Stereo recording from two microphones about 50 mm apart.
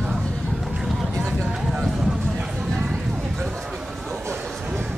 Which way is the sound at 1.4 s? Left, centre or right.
Centre.